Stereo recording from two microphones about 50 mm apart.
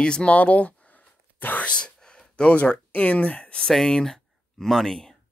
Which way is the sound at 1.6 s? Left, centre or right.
Centre.